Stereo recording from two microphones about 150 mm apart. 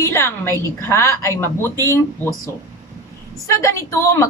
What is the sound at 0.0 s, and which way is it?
A woman's voice, 15° left (ahead or behind).